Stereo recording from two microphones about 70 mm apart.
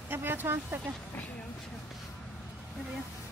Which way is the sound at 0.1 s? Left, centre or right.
Right.